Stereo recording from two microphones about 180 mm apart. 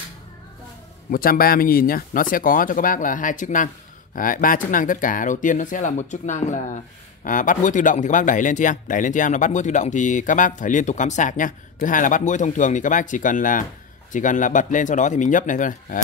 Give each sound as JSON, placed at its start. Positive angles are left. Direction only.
{"t": 1.1, "sound": "speech", "side_deg": 55}